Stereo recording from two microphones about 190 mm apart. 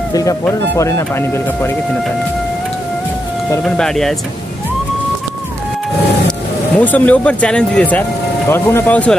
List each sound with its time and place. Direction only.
0.1 s speech: 15° left (ahead or behind)
3.6 s speech: 5° left (ahead or behind)
6.8 s speech: 10° left (ahead or behind)